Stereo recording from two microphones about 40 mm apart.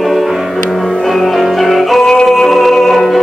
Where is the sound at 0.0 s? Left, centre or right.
Centre.